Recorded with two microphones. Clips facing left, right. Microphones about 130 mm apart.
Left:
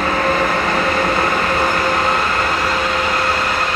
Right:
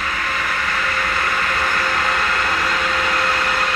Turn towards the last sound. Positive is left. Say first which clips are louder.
# left 2 dB
turn(degrees=25)  # may be behind; listen again after turning